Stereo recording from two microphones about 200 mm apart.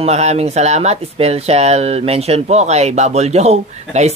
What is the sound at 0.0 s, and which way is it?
Speech, 35° right (ahead or behind).